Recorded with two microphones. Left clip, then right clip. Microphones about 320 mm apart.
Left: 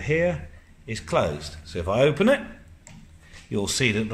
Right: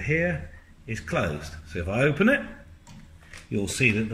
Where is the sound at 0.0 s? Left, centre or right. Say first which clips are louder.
Left 3 dB; left.